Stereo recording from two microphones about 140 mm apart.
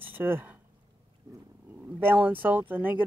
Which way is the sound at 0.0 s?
15° right (ahead or behind).